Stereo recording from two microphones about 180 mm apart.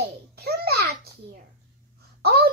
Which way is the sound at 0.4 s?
60° right (ahead or behind).